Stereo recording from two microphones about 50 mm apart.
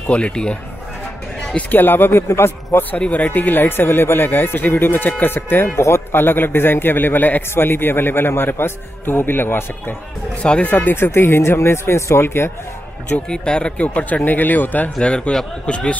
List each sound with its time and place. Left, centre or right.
0.1 s speech: left
1.7 s a man's voice: left
2.2 s speech: left
3.0 s a man's voice: left
5.8 s a man's voice: left
10.3 s speech: left
11.0 s speech: left
13.3 s speech: centre
13.8 s speech: left
15.0 s speech: left